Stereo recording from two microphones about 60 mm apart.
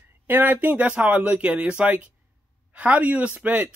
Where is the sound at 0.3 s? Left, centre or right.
Right.